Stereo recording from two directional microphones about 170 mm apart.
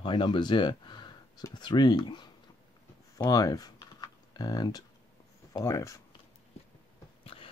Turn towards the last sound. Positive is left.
turn(degrees=30)  # may be behind; listen again after turning